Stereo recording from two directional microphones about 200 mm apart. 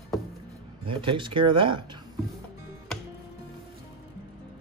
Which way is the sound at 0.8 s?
25° right (ahead or behind).